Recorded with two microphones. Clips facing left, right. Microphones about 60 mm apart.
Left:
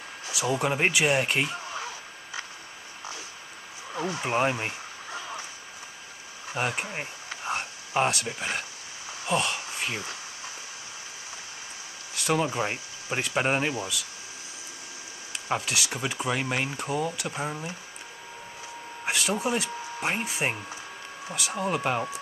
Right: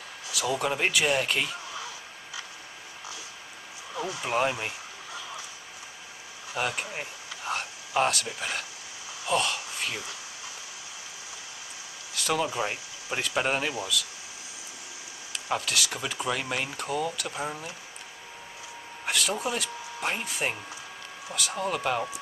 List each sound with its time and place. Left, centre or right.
0.3 s speech: left
3.9 s a sound: left
6.5 s speech: left
12.1 s speech: left
15.3 s speech: left
17.2 s speech: centre
19.0 s speech: left
21.5 s speech: left